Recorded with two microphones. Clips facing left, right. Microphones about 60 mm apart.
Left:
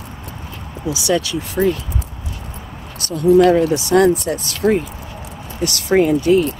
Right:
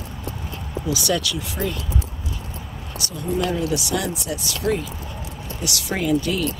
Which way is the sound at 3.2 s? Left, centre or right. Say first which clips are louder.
Left 13 dB; left.